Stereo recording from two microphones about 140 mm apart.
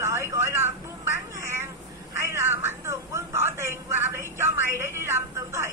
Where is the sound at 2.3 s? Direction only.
20° right (ahead or behind).